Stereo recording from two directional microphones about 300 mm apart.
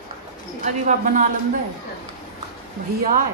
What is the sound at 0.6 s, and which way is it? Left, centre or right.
Speech, right.